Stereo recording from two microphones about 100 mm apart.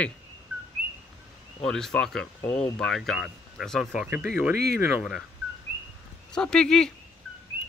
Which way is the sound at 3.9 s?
15° right (ahead or behind).